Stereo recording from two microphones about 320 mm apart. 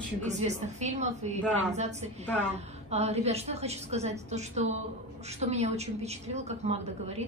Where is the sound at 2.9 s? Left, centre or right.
Centre.